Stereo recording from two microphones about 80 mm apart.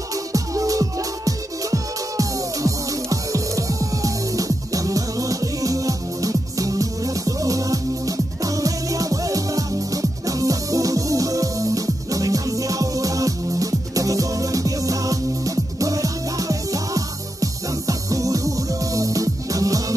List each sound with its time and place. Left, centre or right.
0.1 s music: right